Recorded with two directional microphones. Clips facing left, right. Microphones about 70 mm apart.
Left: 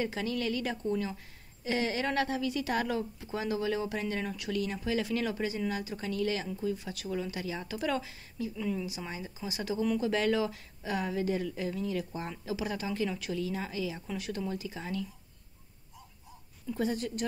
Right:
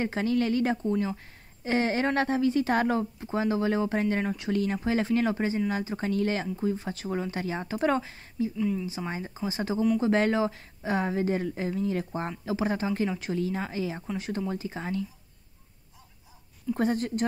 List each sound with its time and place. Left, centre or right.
0.0 s a woman's voice: right
8.5 s speech: centre
8.8 s a woman's voice: right
16.7 s a woman's voice: right